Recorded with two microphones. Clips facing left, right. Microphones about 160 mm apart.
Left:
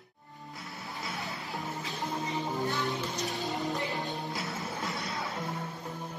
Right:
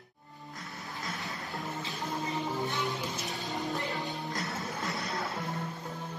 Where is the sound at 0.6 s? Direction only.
Centre (ahead or behind).